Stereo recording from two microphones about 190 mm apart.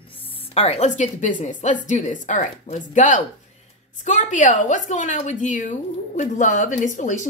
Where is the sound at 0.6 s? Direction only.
35° left (ahead or behind).